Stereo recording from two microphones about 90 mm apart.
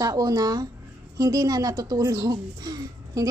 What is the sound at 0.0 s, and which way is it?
A woman's voice, 40° right (ahead or behind).